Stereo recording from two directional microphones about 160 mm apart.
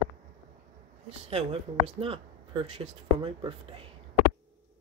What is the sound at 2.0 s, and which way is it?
Speech, 35° right (ahead or behind).